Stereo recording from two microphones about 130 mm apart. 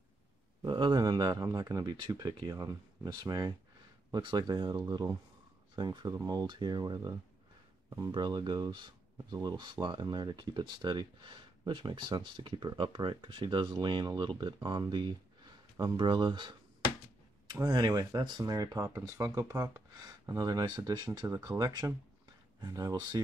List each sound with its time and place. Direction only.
0.7 s speech: 35° right (ahead or behind)